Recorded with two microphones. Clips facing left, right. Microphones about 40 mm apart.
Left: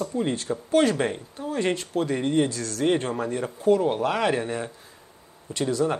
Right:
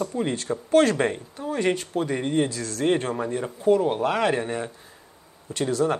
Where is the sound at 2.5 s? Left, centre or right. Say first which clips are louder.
Even; right.